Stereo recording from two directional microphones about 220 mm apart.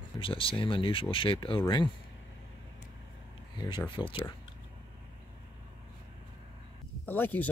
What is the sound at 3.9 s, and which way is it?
Speech, 20° left (ahead or behind).